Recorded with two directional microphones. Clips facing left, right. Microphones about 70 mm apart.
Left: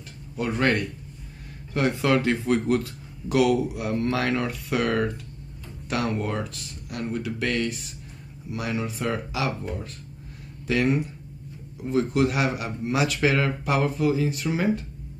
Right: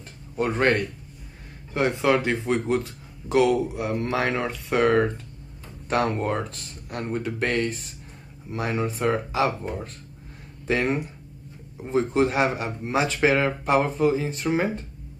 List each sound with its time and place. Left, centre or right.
0.4 s speech: right